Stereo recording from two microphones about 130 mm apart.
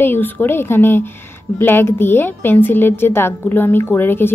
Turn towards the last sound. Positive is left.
turn(degrees=15)  # may be behind; listen again after turning